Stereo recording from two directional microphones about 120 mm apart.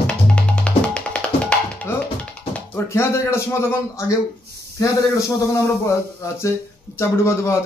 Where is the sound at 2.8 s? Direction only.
20° left (ahead or behind).